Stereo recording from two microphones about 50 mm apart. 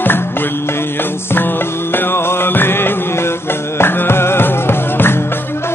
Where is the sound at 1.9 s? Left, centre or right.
Left.